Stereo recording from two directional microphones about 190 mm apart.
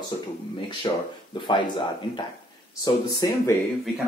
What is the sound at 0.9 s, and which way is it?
Speech, 30° left (ahead or behind).